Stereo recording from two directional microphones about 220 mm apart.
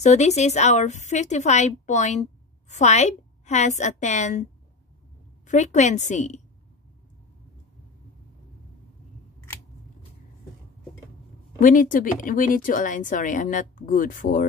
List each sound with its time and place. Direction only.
0.0 s speech: 30° left (ahead or behind)
5.5 s speech: 35° left (ahead or behind)
11.6 s speech: 35° left (ahead or behind)